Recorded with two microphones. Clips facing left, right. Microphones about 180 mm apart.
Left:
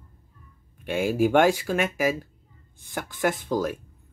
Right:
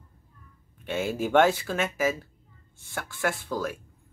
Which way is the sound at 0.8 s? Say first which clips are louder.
Left 6 dB; 10° left (ahead or behind).